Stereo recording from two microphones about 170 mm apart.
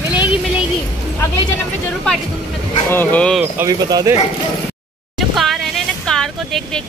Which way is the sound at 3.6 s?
20° right (ahead or behind).